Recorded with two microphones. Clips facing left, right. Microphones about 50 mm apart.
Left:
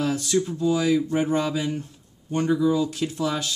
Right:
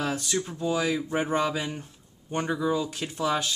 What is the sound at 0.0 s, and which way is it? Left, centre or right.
Speech, centre.